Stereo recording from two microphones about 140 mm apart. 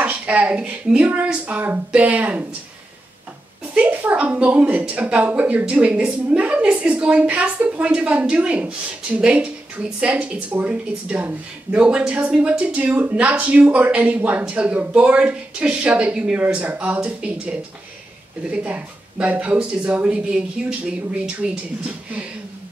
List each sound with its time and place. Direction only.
0.0 s speech: 10° right (ahead or behind)
3.7 s speech: 10° right (ahead or behind)